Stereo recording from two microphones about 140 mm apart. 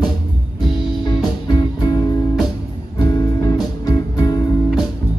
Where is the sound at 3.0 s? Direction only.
25° left (ahead or behind).